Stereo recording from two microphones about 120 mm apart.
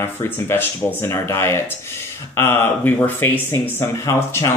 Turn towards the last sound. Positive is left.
turn(degrees=25)  # may be behind; listen again after turning